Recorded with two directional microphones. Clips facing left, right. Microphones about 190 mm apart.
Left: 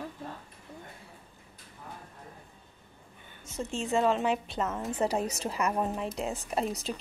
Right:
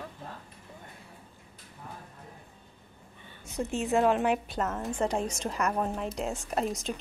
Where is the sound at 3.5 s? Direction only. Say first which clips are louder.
Right 2 dB; 15° right (ahead or behind).